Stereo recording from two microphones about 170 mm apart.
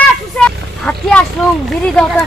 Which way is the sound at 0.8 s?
5° left (ahead or behind).